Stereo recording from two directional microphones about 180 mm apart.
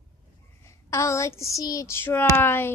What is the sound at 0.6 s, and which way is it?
A woman's voice, 15° left (ahead or behind).